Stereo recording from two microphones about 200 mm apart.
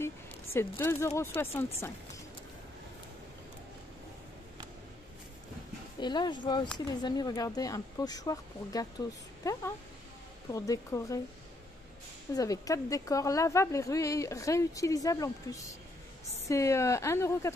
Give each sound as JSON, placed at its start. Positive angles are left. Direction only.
{"t": 0.0, "sound": "speech", "side_deg": 10}
{"t": 5.9, "sound": "a woman's voice", "side_deg": 20}
{"t": 12.4, "sound": "a woman's voice", "side_deg": 15}